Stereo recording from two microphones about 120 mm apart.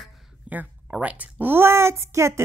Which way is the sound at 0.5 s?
10° right (ahead or behind).